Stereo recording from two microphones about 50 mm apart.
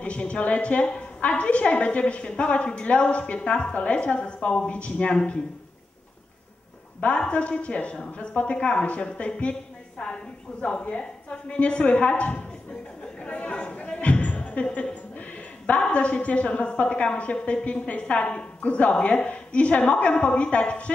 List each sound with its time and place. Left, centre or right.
0.0 s a woman's voice: left
7.0 s a woman's voice: left